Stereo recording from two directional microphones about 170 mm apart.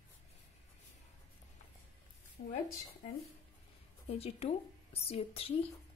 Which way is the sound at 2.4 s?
50° left (ahead or behind).